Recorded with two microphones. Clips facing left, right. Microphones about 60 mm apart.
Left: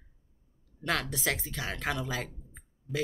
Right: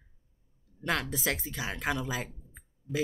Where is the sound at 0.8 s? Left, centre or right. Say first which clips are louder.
Even; centre.